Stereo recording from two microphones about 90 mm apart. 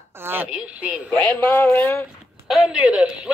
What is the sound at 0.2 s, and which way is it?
Radio, 25° right (ahead or behind).